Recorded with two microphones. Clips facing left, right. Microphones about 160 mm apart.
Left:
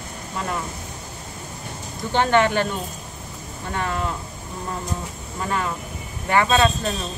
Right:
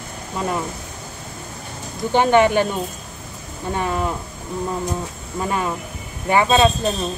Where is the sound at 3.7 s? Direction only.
20° right (ahead or behind).